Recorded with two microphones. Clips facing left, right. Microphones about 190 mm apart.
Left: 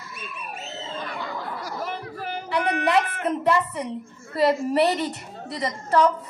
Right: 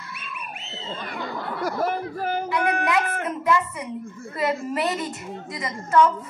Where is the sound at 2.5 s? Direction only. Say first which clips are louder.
Left 3 dB; 35° left (ahead or behind).